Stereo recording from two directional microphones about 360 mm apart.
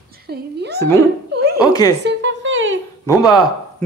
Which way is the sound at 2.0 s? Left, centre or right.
Right.